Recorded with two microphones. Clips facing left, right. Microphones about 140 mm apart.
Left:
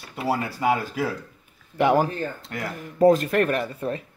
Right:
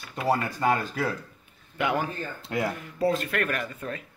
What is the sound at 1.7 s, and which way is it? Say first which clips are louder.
Speech: left 7 dB; 35° left (ahead or behind).